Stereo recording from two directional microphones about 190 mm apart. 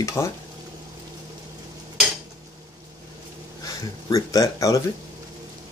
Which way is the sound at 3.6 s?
20° left (ahead or behind).